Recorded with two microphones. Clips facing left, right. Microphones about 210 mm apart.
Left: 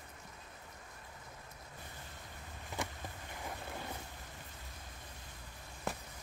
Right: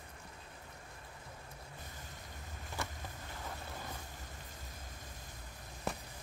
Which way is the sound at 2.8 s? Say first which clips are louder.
Left 2 dB; 15° left (ahead or behind).